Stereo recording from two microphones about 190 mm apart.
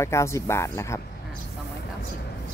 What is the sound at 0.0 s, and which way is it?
Speech, 15° left (ahead or behind).